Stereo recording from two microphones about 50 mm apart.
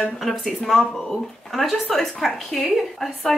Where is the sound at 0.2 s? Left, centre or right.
Centre.